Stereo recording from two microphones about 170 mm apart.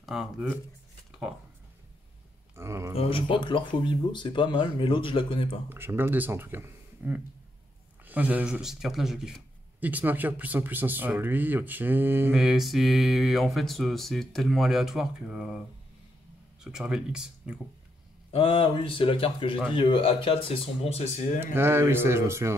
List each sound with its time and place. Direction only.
0.0 s speech: 5° right (ahead or behind)
2.5 s speech: 15° right (ahead or behind)
2.9 s speech: 35° left (ahead or behind)
5.7 s speech: 15° right (ahead or behind)
16.6 s speech: 5° right (ahead or behind)
18.3 s speech: 30° left (ahead or behind)
21.5 s speech: 15° right (ahead or behind)